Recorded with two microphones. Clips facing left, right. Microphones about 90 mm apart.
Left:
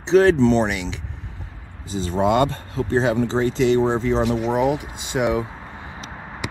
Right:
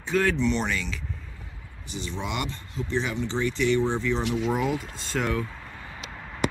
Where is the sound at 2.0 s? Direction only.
40° left (ahead or behind).